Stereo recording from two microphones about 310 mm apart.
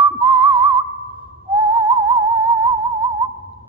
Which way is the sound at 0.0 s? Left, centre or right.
Centre.